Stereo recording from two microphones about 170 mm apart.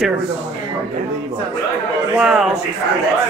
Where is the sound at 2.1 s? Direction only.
5° right (ahead or behind).